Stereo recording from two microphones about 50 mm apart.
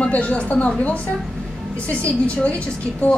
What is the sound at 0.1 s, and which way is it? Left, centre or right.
A woman's voice, left.